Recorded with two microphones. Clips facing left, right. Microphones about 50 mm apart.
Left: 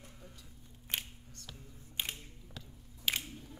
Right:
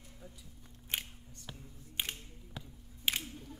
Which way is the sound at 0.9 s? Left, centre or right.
Centre.